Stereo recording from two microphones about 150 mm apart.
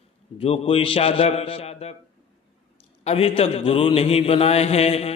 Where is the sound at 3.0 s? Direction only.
40° left (ahead or behind).